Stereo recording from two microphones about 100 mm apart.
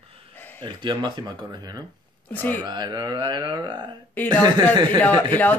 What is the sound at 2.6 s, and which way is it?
Speech, 45° right (ahead or behind).